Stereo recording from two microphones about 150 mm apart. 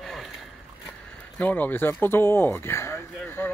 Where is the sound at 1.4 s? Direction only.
10° left (ahead or behind).